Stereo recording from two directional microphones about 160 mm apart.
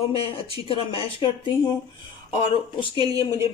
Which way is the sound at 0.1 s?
35° left (ahead or behind).